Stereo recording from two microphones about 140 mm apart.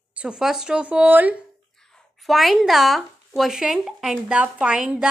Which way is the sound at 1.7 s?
5° left (ahead or behind).